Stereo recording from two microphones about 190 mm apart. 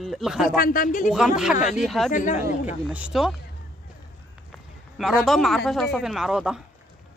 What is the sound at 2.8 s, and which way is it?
Speech, 5° right (ahead or behind).